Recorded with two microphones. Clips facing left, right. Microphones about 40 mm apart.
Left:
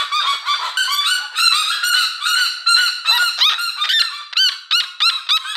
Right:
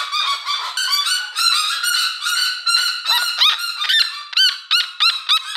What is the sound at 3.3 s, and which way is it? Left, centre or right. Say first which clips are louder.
Honk: even; centre.